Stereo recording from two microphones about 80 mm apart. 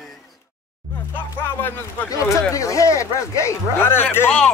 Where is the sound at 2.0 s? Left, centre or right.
Left.